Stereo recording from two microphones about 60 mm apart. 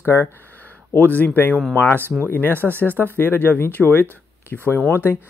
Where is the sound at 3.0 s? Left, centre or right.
Left.